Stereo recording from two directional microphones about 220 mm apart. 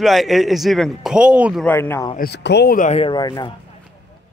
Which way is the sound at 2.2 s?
50° left (ahead or behind).